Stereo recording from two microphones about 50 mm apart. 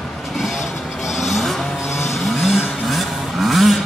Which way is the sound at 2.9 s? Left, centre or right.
Centre.